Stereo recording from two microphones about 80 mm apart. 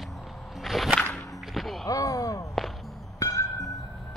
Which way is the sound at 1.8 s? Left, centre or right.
Left.